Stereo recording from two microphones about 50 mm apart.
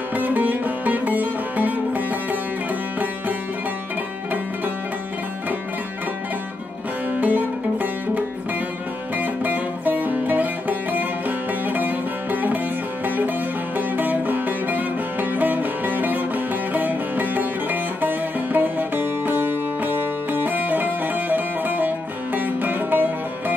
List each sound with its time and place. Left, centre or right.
0.1 s music: right
7.2 s music: right
9.2 s music: right
13.7 s music: right